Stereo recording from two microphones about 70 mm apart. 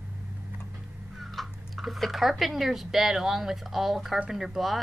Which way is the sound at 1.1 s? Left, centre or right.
Centre.